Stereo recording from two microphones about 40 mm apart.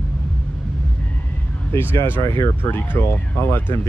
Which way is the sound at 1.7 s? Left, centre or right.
Left.